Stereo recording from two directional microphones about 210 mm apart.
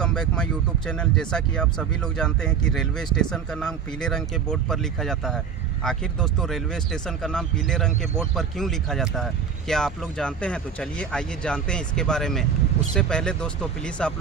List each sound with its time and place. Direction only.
0.0 s speech: 5° left (ahead or behind)